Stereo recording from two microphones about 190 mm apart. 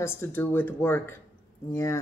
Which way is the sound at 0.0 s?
15° left (ahead or behind).